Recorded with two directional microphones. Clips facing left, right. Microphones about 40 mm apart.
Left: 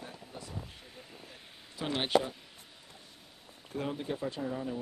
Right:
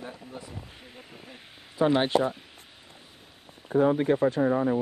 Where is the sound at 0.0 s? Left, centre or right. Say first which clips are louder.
Right 6 dB; right.